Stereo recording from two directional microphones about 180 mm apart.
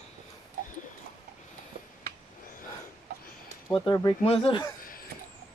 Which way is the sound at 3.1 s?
55° right (ahead or behind).